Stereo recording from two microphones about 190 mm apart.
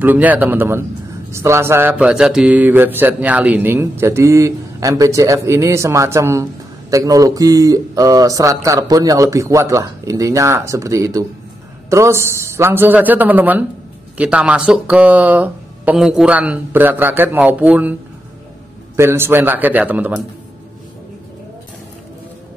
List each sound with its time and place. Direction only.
0.0 s speech: 10° right (ahead or behind)
18.9 s speech: 10° right (ahead or behind)